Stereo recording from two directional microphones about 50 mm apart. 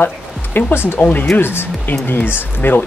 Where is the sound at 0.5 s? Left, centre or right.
Left.